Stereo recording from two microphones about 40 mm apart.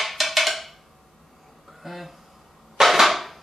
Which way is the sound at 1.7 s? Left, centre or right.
Centre.